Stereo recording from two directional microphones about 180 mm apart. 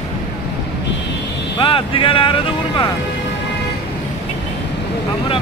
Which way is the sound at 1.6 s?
30° left (ahead or behind).